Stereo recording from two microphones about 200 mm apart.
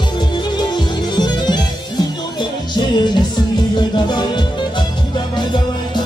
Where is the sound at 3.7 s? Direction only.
20° left (ahead or behind).